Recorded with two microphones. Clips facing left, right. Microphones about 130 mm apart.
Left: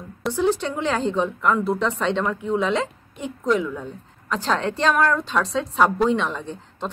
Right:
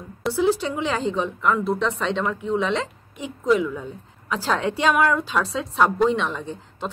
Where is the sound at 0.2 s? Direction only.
5° right (ahead or behind).